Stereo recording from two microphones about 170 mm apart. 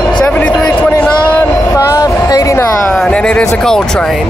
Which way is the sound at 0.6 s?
10° left (ahead or behind).